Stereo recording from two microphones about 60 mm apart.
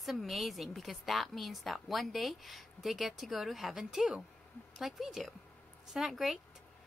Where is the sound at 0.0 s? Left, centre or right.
Centre.